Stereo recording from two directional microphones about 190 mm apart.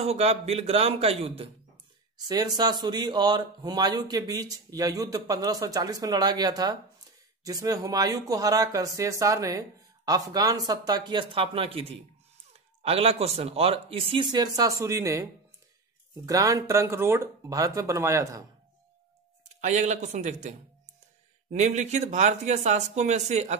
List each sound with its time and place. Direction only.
0.0 s speech: 35° right (ahead or behind)
2.1 s speech: 20° right (ahead or behind)
16.3 s speech: 20° right (ahead or behind)
19.6 s speech: 40° right (ahead or behind)